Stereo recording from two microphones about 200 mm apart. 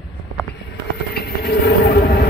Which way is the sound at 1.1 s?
55° left (ahead or behind).